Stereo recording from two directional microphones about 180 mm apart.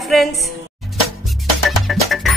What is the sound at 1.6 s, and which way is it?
Music, centre (ahead or behind).